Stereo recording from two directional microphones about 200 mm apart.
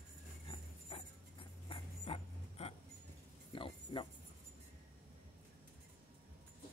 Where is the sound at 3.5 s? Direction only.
25° left (ahead or behind).